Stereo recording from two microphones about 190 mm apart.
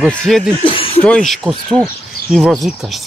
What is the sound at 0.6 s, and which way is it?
Speech, 30° left (ahead or behind).